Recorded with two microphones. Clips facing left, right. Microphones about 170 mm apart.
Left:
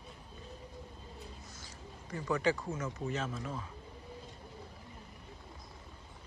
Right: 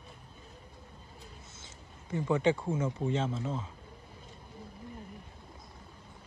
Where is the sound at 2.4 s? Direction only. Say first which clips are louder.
Right 4 dB; 25° right (ahead or behind).